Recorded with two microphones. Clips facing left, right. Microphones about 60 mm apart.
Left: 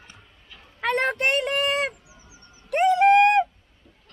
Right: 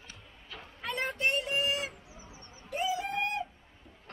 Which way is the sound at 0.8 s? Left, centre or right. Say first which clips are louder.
Left 9 dB; left.